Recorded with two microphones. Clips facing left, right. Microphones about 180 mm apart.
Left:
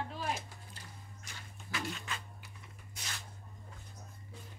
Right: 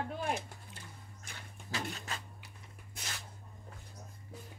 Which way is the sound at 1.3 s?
55° right (ahead or behind).